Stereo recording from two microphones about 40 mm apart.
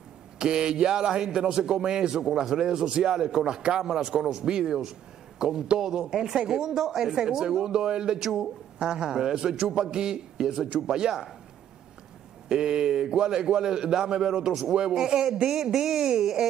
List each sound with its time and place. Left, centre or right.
0.4 s a man's voice: right
6.6 s a man's voice: centre
12.4 s a man's voice: right